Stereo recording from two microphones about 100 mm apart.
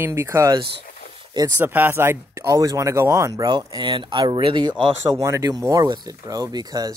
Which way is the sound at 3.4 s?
45° right (ahead or behind).